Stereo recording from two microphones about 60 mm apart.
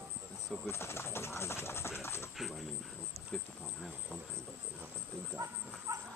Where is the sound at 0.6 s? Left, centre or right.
Left.